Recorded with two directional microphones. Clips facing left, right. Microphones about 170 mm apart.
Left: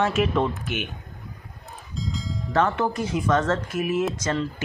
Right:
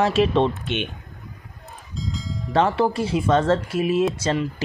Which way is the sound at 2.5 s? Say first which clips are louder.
Right 3 dB; 30° right (ahead or behind).